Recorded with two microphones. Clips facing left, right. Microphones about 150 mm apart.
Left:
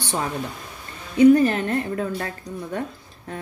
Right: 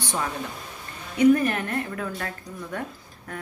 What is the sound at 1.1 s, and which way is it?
A woman's voice, 30° left (ahead or behind).